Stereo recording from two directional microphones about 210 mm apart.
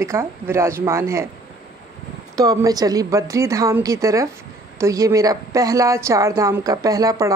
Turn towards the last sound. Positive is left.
turn(degrees=-15)  # may be behind; listen again after turning